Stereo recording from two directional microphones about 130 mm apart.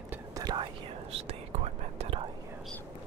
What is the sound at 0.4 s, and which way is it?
Whispering, 30° right (ahead or behind).